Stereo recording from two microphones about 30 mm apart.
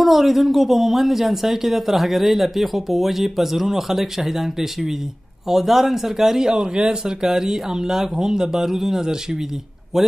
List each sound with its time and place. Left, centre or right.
0.0 s speech: centre
9.0 s speech: centre
9.9 s speech: centre